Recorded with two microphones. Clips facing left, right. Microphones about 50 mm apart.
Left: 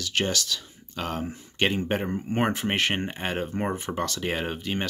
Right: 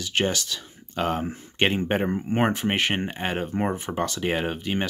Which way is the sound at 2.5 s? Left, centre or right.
Centre.